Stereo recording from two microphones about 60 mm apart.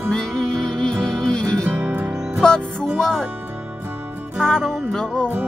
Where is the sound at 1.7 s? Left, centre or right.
Right.